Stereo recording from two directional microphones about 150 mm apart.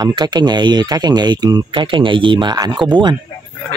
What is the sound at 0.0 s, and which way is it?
Speech, 30° right (ahead or behind).